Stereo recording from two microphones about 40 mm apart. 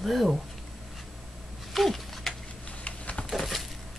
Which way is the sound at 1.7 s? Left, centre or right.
Centre.